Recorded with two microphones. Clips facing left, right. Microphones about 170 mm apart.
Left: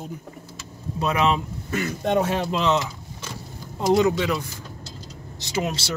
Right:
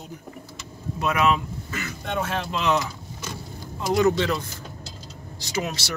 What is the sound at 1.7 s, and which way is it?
Speech, 45° left (ahead or behind).